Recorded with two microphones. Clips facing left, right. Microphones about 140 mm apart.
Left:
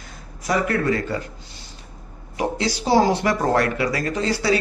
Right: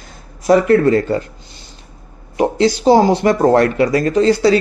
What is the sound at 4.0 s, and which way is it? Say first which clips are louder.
Speech: right 10 dB; 45° right (ahead or behind).